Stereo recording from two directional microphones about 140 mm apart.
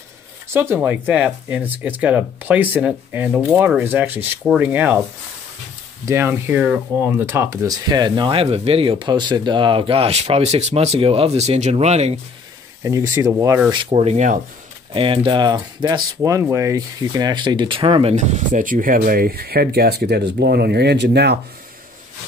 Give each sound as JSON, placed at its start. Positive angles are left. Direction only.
{"t": 0.5, "sound": "speech", "side_deg": -15}
{"t": 6.0, "sound": "speech", "side_deg": -15}
{"t": 12.8, "sound": "speech", "side_deg": -20}
{"t": 13.7, "sound": "speech", "side_deg": -35}
{"t": 14.1, "sound": "speech", "side_deg": -65}
{"t": 15.0, "sound": "speech", "side_deg": -40}
{"t": 18.1, "sound": "speech", "side_deg": -55}